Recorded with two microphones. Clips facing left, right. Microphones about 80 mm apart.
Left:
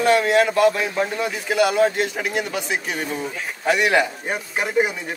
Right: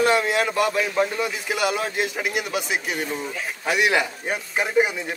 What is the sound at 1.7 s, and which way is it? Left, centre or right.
Speech, centre.